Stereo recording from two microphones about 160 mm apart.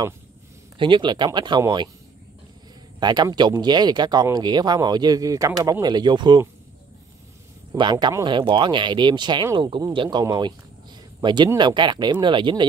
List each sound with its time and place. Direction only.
0.7 s speech: 30° right (ahead or behind)
3.0 s speech: 25° right (ahead or behind)
7.7 s speech: 30° right (ahead or behind)